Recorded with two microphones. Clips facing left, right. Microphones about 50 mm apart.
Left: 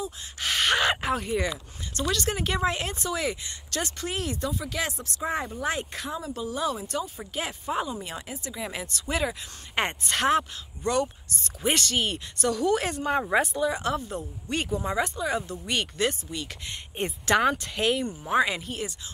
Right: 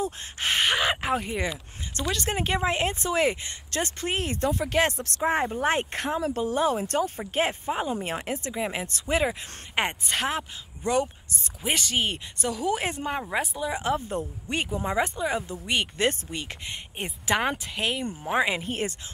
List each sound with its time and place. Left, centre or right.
0.4 s a sound: right
0.7 s a sound: centre
2.0 s speech: right
8.5 s speech: right
9.8 s speech: centre
10.8 s speech: centre
11.6 s speech: centre
11.9 s speech: centre
13.3 s speech: centre
13.7 s speech: right
16.0 s speech: right
16.6 s speech: centre
18.2 s speech: centre
18.6 s speech: right